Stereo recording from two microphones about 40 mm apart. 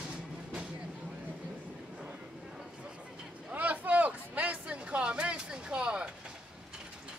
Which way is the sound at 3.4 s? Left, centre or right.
Right.